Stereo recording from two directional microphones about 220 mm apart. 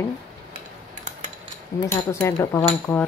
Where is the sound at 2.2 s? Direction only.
10° left (ahead or behind).